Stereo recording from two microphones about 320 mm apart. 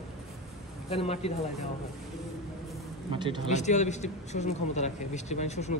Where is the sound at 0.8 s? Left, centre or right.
Centre.